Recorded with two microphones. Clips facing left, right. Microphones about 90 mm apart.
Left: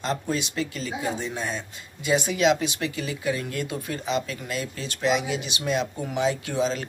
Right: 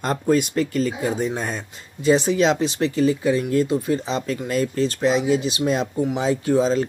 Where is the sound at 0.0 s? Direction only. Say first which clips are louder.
Right 8 dB; 45° right (ahead or behind); by 4.2 s 30° right (ahead or behind).